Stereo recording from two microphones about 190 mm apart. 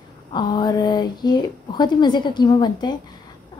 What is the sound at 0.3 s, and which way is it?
A woman's voice, 25° left (ahead or behind).